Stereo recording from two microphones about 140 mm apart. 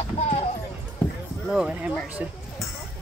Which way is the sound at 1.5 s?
5° right (ahead or behind).